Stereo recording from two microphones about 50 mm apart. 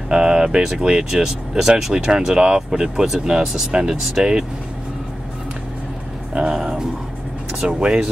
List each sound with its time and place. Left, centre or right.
0.1 s speech: centre
6.3 s speech: centre